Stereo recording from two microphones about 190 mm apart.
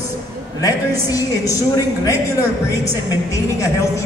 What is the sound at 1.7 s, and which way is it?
Speech, 15° left (ahead or behind).